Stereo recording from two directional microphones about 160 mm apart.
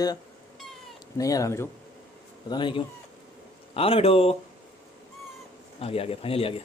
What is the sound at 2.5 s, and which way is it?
Speech, 30° left (ahead or behind).